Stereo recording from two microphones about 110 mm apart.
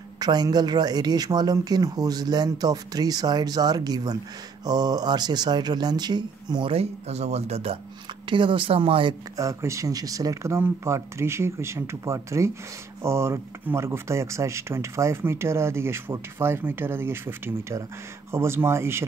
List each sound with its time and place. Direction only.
0.2 s speech: 40° right (ahead or behind)
6.7 s speech: 70° right (ahead or behind)
8.3 s speech: 50° right (ahead or behind)
9.4 s speech: 30° right (ahead or behind)